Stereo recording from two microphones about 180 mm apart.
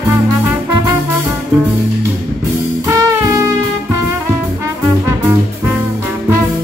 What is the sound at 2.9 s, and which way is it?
Music, 15° right (ahead or behind).